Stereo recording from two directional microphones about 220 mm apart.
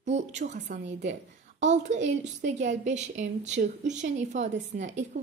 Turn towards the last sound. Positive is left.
turn(degrees=-30)  # may be behind; listen again after turning